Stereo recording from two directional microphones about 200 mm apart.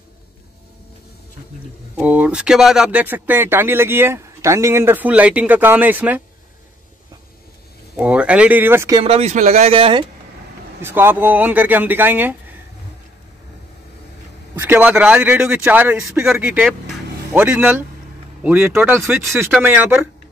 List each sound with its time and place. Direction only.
2.0 s speech: 5° right (ahead or behind)
7.9 s speech: 5° right (ahead or behind)
9.0 s speech: 30° right (ahead or behind)
10.8 s speech: 10° right (ahead or behind)
14.5 s speech: 10° right (ahead or behind)